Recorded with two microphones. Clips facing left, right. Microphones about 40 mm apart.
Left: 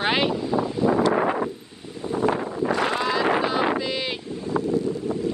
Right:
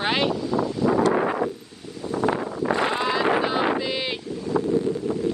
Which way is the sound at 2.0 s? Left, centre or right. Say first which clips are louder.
Left 1 dB; left.